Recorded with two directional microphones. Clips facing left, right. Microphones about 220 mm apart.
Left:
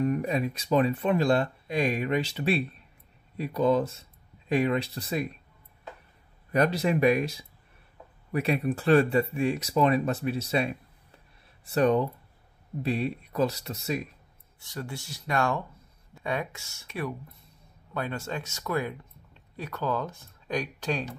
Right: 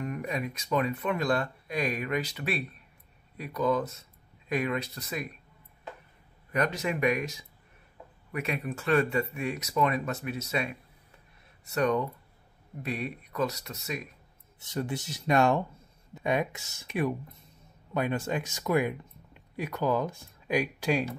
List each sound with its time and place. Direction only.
0.0 s speech: 35° left (ahead or behind)
6.5 s speech: 35° left (ahead or behind)
14.6 s speech: 20° right (ahead or behind)